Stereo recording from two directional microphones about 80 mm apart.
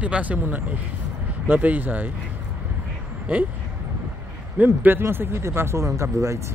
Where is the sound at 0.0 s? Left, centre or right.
Centre.